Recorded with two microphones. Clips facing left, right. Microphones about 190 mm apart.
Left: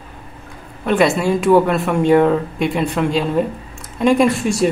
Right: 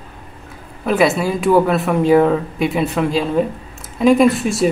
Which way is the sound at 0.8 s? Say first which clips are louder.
Even; 5° right (ahead or behind).